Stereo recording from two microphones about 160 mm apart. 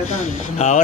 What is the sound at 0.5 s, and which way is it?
Speech, 45° left (ahead or behind).